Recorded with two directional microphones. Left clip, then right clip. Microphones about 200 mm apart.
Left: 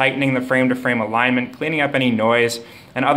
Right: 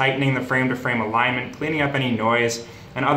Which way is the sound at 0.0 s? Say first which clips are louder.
Left 3 dB; 45° left (ahead or behind).